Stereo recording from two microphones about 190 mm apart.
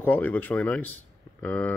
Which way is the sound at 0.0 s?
10° left (ahead or behind).